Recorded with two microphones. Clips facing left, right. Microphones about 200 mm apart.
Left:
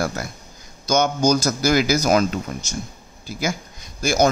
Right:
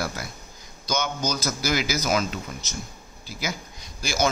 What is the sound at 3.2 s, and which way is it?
A man's voice, 45° left (ahead or behind).